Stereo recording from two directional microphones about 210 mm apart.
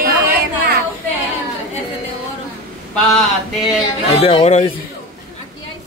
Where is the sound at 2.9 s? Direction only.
Centre (ahead or behind).